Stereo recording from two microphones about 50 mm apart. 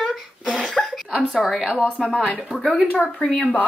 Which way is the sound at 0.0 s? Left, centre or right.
Centre.